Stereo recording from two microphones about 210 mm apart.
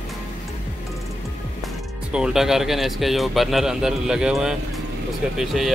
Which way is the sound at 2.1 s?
5° right (ahead or behind).